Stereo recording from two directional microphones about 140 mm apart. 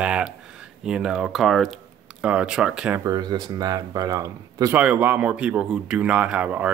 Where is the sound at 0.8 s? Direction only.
5° right (ahead or behind).